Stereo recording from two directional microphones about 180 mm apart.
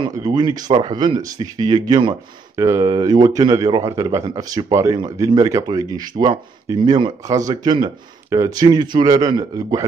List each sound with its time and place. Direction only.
0.0 s speech: 25° right (ahead or behind)